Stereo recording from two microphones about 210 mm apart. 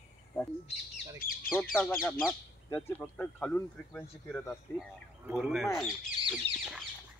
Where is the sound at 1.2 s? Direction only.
45° left (ahead or behind).